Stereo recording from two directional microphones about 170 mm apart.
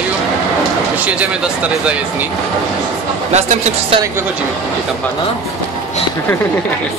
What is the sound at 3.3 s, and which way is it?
Speech, 40° right (ahead or behind).